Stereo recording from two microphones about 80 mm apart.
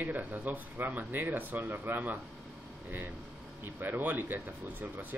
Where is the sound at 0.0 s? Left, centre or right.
Right.